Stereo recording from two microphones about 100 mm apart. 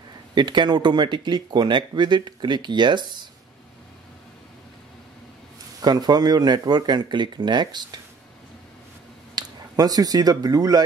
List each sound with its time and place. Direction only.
0.3 s speech: 50° right (ahead or behind)
5.8 s speech: 40° right (ahead or behind)
9.3 s speech: 40° right (ahead or behind)